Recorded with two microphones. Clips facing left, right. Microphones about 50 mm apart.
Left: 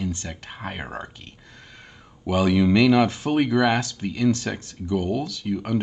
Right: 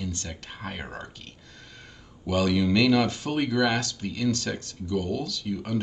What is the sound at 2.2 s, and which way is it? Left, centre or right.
Speech, centre.